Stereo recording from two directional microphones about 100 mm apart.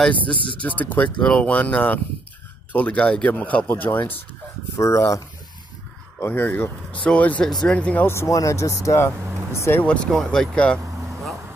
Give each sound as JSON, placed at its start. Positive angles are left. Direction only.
{"t": 0.6, "sound": "speech", "side_deg": 15}
{"t": 4.7, "sound": "speech", "side_deg": 30}
{"t": 6.2, "sound": "speech", "side_deg": 20}
{"t": 8.1, "sound": "speech", "side_deg": 30}
{"t": 10.0, "sound": "speech", "side_deg": 5}